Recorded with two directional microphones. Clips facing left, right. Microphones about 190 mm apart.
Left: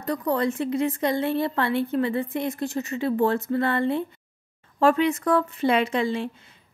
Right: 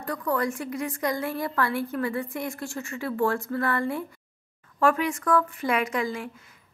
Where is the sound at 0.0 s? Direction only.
20° left (ahead or behind).